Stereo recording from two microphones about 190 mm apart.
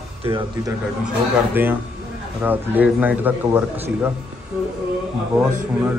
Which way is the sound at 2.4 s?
10° right (ahead or behind).